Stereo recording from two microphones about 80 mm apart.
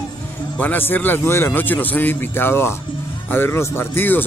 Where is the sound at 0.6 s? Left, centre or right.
Left.